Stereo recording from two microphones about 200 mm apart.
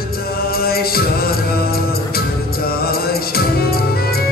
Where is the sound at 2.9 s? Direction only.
50° left (ahead or behind).